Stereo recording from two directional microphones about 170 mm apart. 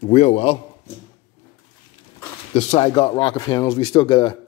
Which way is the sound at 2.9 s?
30° left (ahead or behind).